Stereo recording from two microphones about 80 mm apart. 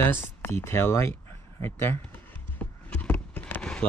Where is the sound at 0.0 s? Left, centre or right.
Left.